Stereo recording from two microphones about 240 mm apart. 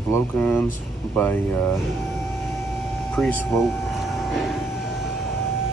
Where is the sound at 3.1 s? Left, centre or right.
Centre.